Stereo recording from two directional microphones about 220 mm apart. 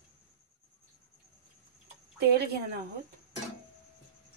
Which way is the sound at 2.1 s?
45° right (ahead or behind).